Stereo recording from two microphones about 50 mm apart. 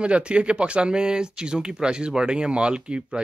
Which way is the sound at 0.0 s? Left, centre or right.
Right.